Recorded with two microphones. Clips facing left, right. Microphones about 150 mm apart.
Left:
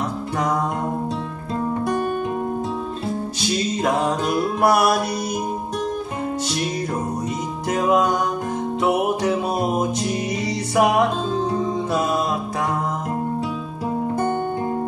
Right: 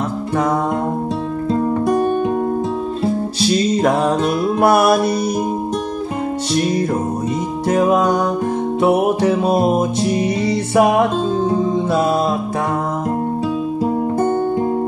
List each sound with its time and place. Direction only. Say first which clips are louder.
1.5 s music: right 6 dB; 30° right (ahead or behind)
3.3 s music: right 8 dB; 35° right (ahead or behind)
7.6 s music: right 4 dB; 30° right (ahead or behind)